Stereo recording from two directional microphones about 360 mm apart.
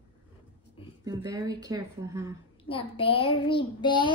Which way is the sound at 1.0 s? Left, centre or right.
Centre.